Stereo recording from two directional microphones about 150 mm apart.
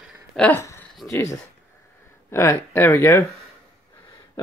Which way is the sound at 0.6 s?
20° left (ahead or behind).